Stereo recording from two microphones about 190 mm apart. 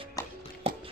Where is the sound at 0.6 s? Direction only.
30° right (ahead or behind).